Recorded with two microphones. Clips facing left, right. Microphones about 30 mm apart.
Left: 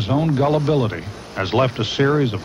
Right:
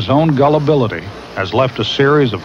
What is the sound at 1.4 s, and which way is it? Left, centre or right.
Speech, centre.